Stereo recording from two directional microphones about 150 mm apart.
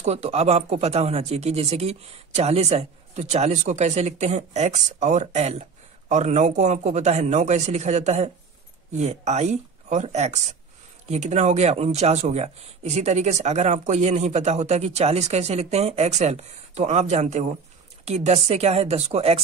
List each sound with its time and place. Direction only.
0.0 s speech: 45° right (ahead or behind)